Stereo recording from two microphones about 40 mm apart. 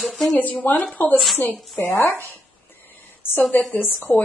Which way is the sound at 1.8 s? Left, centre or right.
Left.